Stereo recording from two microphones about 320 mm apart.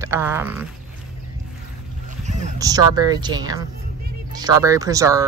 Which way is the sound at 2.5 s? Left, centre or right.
Centre.